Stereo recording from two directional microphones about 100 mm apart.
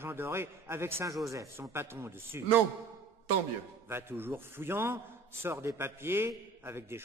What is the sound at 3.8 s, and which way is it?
A man's voice, 25° right (ahead or behind).